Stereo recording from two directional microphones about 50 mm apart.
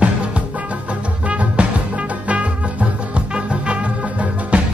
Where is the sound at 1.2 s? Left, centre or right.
Right.